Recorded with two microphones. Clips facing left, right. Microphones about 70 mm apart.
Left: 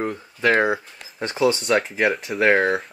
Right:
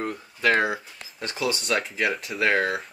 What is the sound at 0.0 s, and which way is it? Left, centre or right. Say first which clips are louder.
Speech: left 3 dB; centre.